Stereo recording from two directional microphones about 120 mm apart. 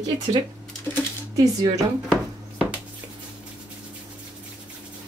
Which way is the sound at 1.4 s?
30° right (ahead or behind).